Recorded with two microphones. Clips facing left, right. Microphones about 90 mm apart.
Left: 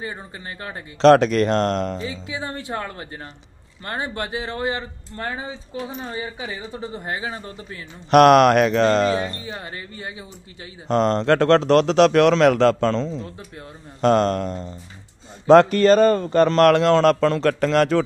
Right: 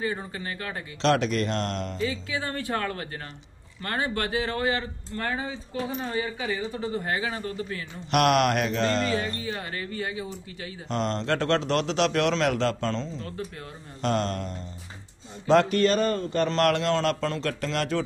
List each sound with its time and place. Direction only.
0.0 s speech: 25° left (ahead or behind)
1.0 s speech: 55° left (ahead or behind)
2.0 s speech: 25° left (ahead or behind)
8.1 s speech: 50° left (ahead or behind)
9.4 s speech: 25° left (ahead or behind)
10.9 s speech: 50° left (ahead or behind); by 13.0 s 80° left
14.0 s speech: 60° left (ahead or behind)
15.4 s speech: 45° left (ahead or behind)
16.4 s speech: 60° left (ahead or behind)